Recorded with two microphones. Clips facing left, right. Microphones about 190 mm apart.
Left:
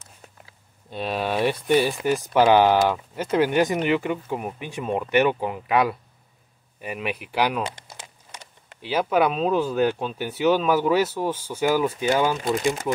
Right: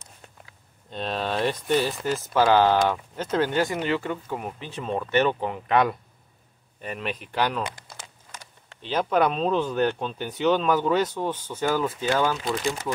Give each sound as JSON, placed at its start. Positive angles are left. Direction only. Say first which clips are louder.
{"t": 0.8, "sound": "speech", "louder": "left 2 dB", "side_deg": 10}
{"t": 7.6, "sound": "crumpling", "louder": "left 2 dB", "side_deg": 25}
{"t": 8.8, "sound": "speech", "louder": "left 1 dB", "side_deg": 5}